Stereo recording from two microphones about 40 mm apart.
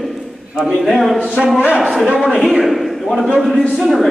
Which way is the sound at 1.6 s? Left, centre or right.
Right.